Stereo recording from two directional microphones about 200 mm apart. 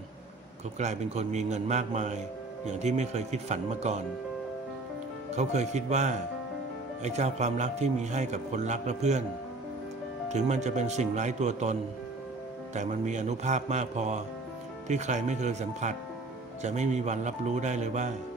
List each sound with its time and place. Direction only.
0.7 s a man's voice: 35° right (ahead or behind)
5.3 s a man's voice: 35° right (ahead or behind)
10.3 s a man's voice: 35° right (ahead or behind)
12.7 s a man's voice: 35° right (ahead or behind)